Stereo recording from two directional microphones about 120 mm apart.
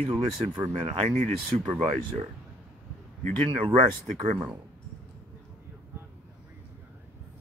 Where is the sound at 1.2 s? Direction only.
65° right (ahead or behind).